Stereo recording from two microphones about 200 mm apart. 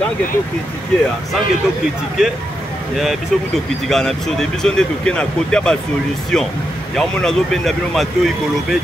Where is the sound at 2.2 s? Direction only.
5° right (ahead or behind).